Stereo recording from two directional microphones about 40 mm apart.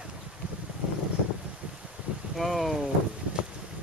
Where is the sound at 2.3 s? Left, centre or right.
Centre.